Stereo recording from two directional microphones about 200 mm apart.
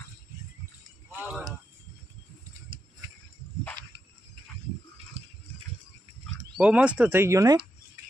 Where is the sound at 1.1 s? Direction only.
5° right (ahead or behind).